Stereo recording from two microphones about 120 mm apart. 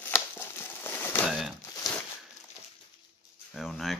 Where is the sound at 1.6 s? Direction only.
30° left (ahead or behind).